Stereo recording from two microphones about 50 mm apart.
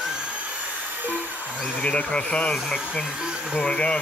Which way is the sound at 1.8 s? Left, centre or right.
Left.